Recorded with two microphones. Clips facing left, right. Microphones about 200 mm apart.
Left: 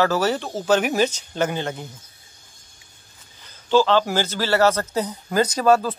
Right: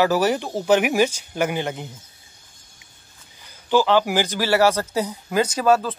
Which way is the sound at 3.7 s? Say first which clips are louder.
Even; 15° right (ahead or behind).